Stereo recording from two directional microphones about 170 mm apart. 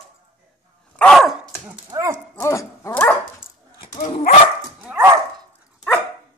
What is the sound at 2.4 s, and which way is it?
Dog, 15° left (ahead or behind).